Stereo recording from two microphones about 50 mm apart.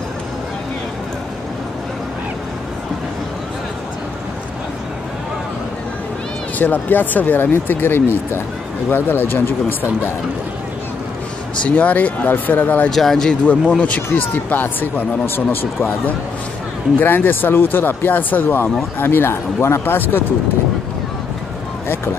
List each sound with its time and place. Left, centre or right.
6.6 s speech: left
11.6 s speech: left
12.9 s speech: centre
13.5 s speech: left